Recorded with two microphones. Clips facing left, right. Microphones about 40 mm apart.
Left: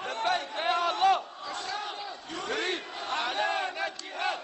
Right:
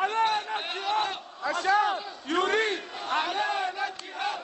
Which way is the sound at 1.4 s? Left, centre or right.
Right.